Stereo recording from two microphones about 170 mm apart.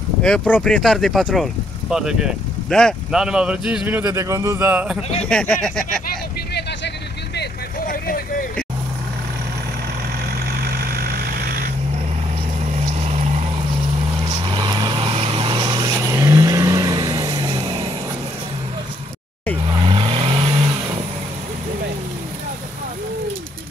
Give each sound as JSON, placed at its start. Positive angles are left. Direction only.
{"t": 0.2, "sound": "speech", "side_deg": 5}
{"t": 5.3, "sound": "speech", "side_deg": 5}
{"t": 7.9, "sound": "vehicle", "side_deg": 55}
{"t": 10.6, "sound": "vehicle", "side_deg": -65}
{"t": 13.0, "sound": "vehicle", "side_deg": -40}
{"t": 14.4, "sound": "vehicle", "side_deg": -25}
{"t": 19.7, "sound": "vehicle", "side_deg": -30}